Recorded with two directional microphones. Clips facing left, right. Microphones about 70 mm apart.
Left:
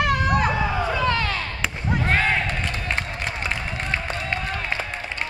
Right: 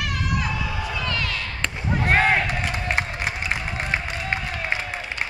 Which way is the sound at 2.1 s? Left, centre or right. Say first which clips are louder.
Right 3 dB; centre.